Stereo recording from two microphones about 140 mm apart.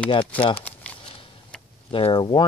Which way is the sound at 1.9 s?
40° left (ahead or behind).